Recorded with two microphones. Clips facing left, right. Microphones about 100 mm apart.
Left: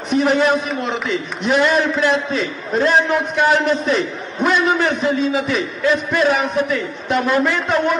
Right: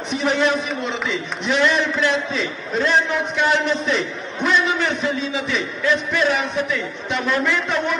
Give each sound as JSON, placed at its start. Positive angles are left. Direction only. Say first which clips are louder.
{"t": 0.1, "sound": "a man's voice", "louder": "left 4 dB", "side_deg": 0}
{"t": 1.5, "sound": "a man's voice", "louder": "left 3 dB", "side_deg": 45}
{"t": 3.8, "sound": "a sound", "louder": "left 3 dB", "side_deg": 45}
{"t": 4.9, "sound": "a man's voice", "louder": "left 5 dB", "side_deg": 0}
{"t": 5.5, "sound": "a man's voice", "louder": "left 3 dB", "side_deg": 40}